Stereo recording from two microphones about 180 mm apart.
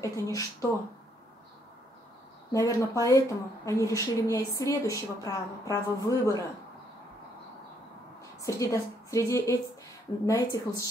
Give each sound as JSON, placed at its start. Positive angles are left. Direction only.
{"t": 0.0, "sound": "speech", "side_deg": 20}
{"t": 2.5, "sound": "speech", "side_deg": 20}
{"t": 8.4, "sound": "a woman's voice", "side_deg": 20}